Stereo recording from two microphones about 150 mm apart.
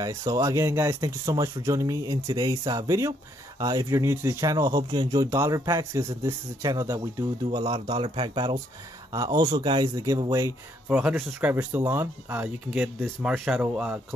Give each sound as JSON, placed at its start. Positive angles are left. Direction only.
{"t": 0.0, "sound": "speech", "side_deg": -20}
{"t": 9.1, "sound": "speech", "side_deg": -25}
{"t": 11.0, "sound": "speech", "side_deg": -5}